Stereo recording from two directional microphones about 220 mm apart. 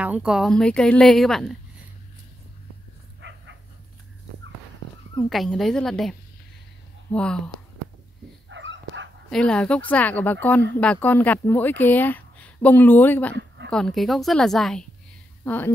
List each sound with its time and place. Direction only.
0.0 s a woman's voice: 5° right (ahead or behind)
3.2 s dog: 55° right (ahead or behind)
5.3 s a woman's voice: centre (ahead or behind)
8.5 s dog: 55° right (ahead or behind)
9.3 s a woman's voice: 5° left (ahead or behind)